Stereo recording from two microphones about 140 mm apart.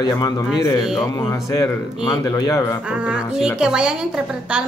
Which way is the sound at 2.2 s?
25° left (ahead or behind).